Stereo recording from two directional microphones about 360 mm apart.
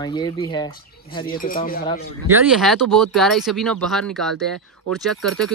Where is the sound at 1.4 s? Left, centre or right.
Left.